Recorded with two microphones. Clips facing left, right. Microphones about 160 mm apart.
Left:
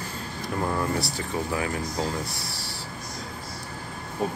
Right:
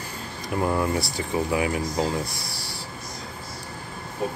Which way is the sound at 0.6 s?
10° right (ahead or behind).